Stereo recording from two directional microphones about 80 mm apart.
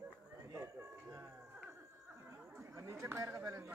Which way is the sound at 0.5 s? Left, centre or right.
Right.